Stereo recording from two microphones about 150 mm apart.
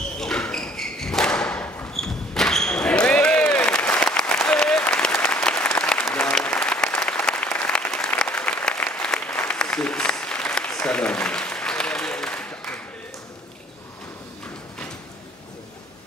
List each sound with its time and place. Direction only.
0.2 s thump: 5° left (ahead or behind)
2.0 s basketball bounce: 5° left (ahead or behind)